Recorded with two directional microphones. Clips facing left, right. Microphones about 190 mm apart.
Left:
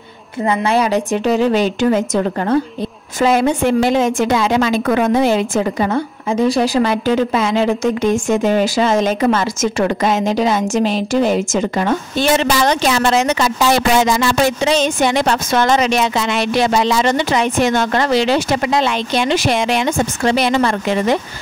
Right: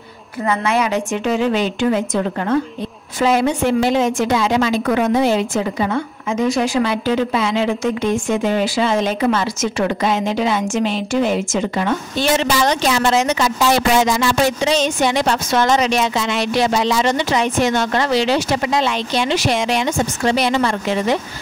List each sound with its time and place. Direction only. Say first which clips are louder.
0.4 s a woman's voice: left 3 dB; 30° left (ahead or behind)
3.2 s speech: left 2 dB; 50° left (ahead or behind)
5.9 s speech: left 3 dB; 35° left (ahead or behind)
12.4 s a woman's voice: left 2 dB; 60° left (ahead or behind)